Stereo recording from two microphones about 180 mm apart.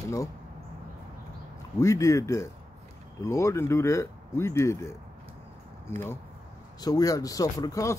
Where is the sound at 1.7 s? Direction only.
15° left (ahead or behind).